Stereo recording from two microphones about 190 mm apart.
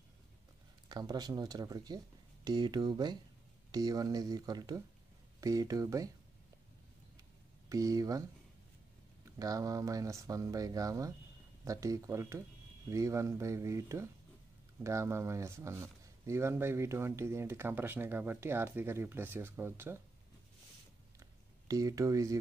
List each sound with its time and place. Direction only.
0.8 s speech: 20° right (ahead or behind)
7.7 s speech: 20° right (ahead or behind)
9.4 s speech: 20° right (ahead or behind)
21.2 s a sound: 20° right (ahead or behind)